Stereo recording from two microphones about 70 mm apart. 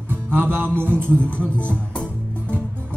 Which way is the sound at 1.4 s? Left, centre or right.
Centre.